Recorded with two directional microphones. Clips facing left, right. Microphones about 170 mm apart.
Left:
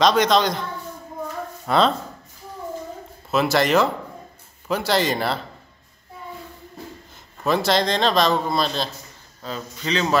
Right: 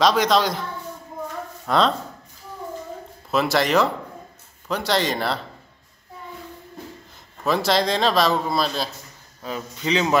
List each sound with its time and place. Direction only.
0.0 s a man's voice: centre (ahead or behind)
1.7 s a man's voice: centre (ahead or behind)
3.3 s a man's voice: centre (ahead or behind)
7.4 s a man's voice: centre (ahead or behind)